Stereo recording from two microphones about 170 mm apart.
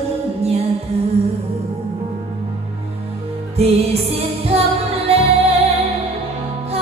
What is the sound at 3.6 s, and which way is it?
Music, 35° right (ahead or behind).